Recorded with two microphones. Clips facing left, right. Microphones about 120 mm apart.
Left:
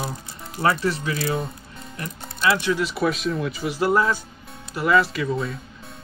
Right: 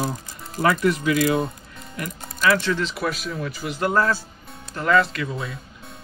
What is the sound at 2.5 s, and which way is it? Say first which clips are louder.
A man's voice: even; 15° left (ahead or behind).